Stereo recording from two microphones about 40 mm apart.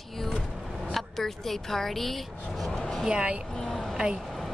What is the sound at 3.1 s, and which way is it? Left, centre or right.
Speech, right.